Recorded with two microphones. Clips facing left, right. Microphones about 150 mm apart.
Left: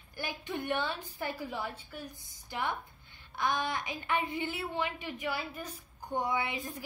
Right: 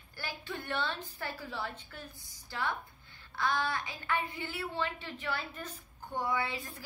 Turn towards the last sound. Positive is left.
turn(degrees=20)  # may be behind; listen again after turning